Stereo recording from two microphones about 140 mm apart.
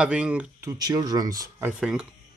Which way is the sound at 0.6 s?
30° right (ahead or behind).